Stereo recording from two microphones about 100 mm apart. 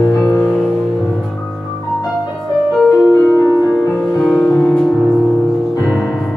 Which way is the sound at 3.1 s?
15° left (ahead or behind).